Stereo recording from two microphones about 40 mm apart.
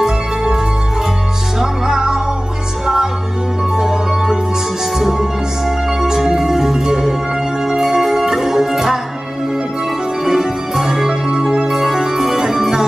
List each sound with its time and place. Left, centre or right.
1.6 s music: centre
3.7 s music: centre
10.2 s music: centre
11.7 s music: centre